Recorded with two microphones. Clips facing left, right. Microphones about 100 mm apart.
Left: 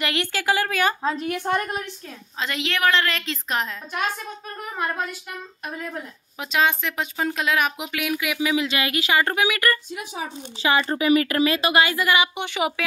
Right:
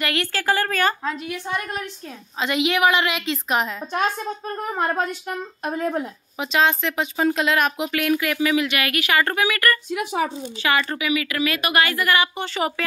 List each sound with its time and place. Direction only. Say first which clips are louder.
0.0 s a woman's voice: right 1 dB; 20° left (ahead or behind)
1.2 s a woman's voice: left 4 dB; 50° left (ahead or behind)
2.4 s a woman's voice: right 4 dB; 10° right (ahead or behind)
4.7 s speech: right 3 dB; 35° right (ahead or behind)
6.4 s speech: right 2 dB; 5° left (ahead or behind)
9.8 s speech: right 8 dB; 65° right (ahead or behind)
10.6 s speech: left 1 dB; 25° left (ahead or behind)
11.0 s speech: left 5 dB; 40° left (ahead or behind)
11.4 s speech: left 1 dB; 25° left (ahead or behind); by 12.8 s 10° left (ahead or behind)